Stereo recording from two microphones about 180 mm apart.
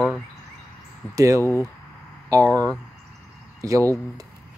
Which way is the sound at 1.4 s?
15° left (ahead or behind).